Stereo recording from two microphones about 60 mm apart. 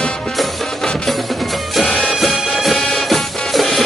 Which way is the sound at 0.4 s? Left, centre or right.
Centre.